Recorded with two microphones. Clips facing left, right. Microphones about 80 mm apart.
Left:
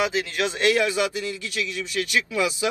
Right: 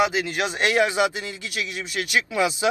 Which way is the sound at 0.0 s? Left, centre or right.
Right.